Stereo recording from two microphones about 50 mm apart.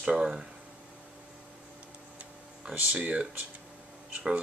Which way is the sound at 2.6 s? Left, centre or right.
Right.